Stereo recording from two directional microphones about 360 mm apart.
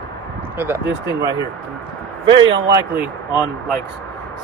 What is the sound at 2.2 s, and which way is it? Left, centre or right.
Speech, centre.